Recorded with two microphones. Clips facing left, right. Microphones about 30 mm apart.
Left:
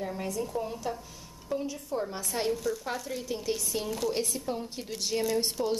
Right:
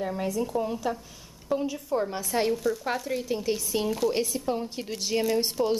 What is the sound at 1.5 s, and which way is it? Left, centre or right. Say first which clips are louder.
Speech: right 5 dB; right.